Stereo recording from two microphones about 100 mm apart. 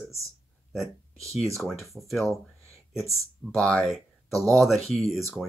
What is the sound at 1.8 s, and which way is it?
Speech, centre (ahead or behind).